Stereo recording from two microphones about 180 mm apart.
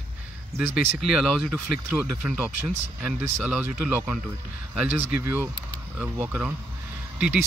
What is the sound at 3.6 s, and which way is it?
Speech, 10° right (ahead or behind).